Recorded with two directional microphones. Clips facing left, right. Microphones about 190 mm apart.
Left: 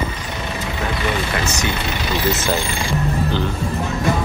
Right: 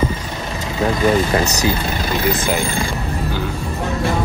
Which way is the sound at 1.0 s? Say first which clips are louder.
Right 8 dB; 35° right (ahead or behind).